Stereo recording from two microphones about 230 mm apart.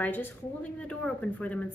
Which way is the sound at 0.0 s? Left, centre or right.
Centre.